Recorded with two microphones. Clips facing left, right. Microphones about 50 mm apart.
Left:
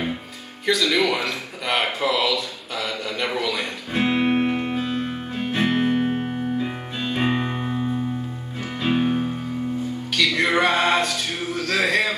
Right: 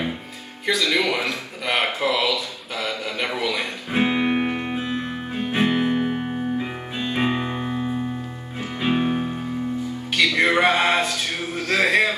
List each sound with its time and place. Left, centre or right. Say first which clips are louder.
0.7 s a man's voice: left 1 dB; centre
4.2 s music: left 1 dB; centre
11.5 s a sound: right 2 dB; centre